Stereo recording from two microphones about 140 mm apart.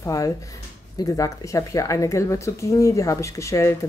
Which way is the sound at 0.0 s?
25° left (ahead or behind).